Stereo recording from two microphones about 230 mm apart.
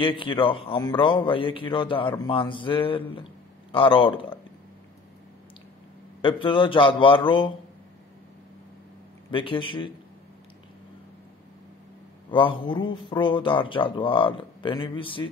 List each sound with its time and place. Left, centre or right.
0.0 s speech: left
6.2 s speech: left
9.3 s speech: left
12.3 s speech: left